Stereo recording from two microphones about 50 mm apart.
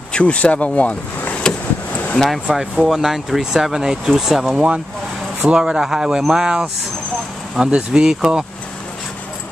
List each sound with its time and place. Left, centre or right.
0.1 s speech: left
1.5 s vehicle: centre
2.4 s speech: centre